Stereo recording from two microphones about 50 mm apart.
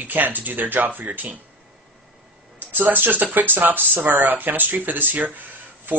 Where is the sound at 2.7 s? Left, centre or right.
Right.